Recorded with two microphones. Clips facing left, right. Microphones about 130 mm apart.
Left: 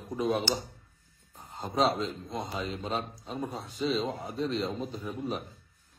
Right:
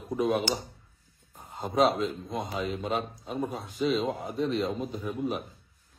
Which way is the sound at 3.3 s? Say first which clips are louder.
Right 3 dB; 15° right (ahead or behind).